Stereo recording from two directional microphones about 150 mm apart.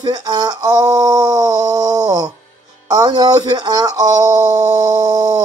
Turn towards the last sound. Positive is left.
turn(degrees=-25)  # may be behind; listen again after turning